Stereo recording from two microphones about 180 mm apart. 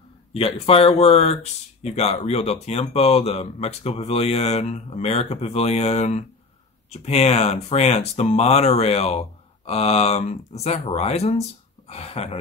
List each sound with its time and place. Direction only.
0.3 s speech: 35° left (ahead or behind)